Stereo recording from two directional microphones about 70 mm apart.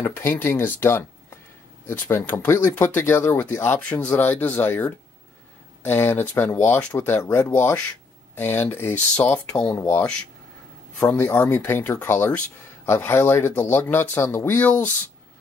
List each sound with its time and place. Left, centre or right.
0.0 s speech: left
3.9 s speech: left
9.1 s speech: left
11.1 s speech: left
14.6 s speech: left